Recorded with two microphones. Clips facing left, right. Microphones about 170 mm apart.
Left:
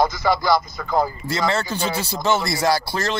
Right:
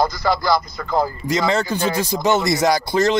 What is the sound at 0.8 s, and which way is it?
Speech, 5° left (ahead or behind).